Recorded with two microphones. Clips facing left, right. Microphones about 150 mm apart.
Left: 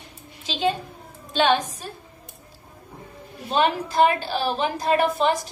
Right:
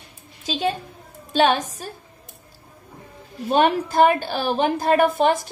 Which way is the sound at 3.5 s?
50° right (ahead or behind).